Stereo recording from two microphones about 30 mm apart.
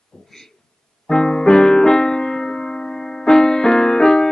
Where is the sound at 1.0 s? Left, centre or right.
Left.